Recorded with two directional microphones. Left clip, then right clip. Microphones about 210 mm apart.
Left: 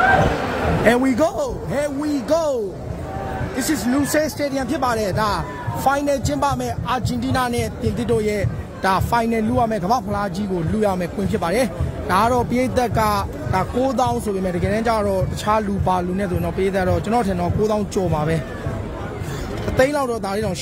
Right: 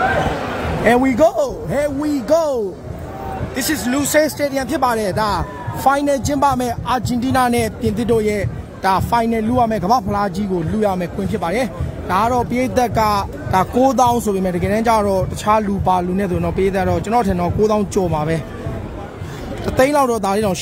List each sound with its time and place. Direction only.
0.8 s speech: 15° right (ahead or behind)
3.5 s speech: 20° right (ahead or behind)
19.8 s speech: 20° right (ahead or behind)